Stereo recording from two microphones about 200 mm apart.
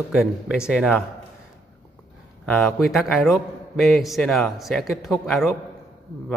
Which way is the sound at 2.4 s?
Centre (ahead or behind).